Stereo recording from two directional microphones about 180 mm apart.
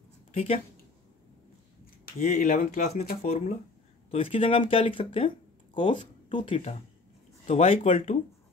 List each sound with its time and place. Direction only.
0.3 s speech: 30° left (ahead or behind)
2.1 s speech: 40° left (ahead or behind)